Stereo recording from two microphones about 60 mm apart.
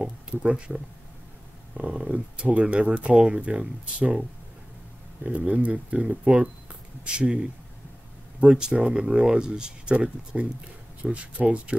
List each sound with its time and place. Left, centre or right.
0.0 s speech: centre
1.8 s speech: right
5.2 s speech: right